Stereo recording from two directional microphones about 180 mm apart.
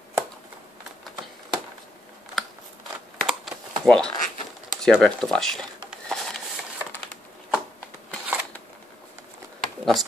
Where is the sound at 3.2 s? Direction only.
Centre (ahead or behind).